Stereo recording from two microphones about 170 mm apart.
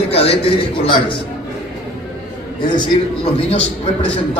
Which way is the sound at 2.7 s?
30° left (ahead or behind).